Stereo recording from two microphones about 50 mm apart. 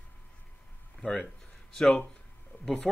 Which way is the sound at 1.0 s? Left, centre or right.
Left.